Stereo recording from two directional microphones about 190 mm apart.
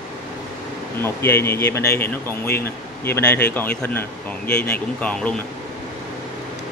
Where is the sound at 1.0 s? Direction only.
10° left (ahead or behind).